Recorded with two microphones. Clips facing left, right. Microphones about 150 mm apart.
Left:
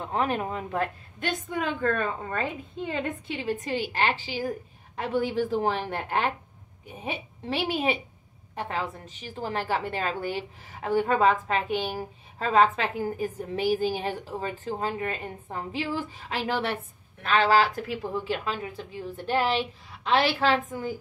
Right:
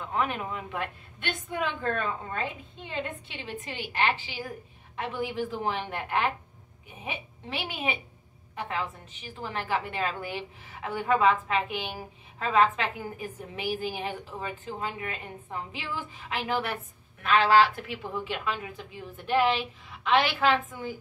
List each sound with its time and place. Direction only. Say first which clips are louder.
0.0 s a woman's voice: left 3 dB; 35° left (ahead or behind)